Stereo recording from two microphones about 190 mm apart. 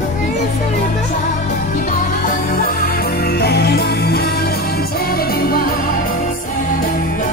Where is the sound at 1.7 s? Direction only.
45° left (ahead or behind).